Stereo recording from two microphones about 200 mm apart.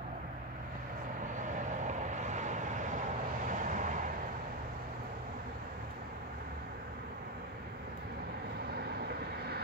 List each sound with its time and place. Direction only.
1.3 s vehicle: 40° right (ahead or behind)